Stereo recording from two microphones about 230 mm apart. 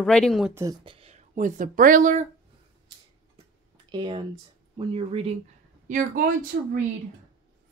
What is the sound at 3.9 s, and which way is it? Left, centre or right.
Speech, centre.